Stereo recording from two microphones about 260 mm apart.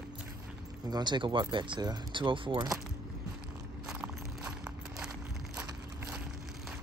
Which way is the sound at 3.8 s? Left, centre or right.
Centre.